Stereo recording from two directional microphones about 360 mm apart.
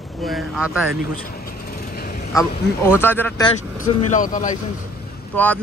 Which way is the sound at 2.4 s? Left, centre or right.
Centre.